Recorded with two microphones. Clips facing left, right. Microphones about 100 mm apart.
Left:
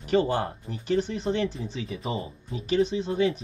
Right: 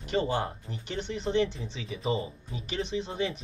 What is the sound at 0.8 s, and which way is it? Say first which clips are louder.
Speech: left 7 dB; 40° left (ahead or behind).